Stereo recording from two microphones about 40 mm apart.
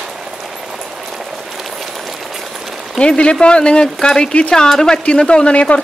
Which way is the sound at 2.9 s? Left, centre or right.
Left.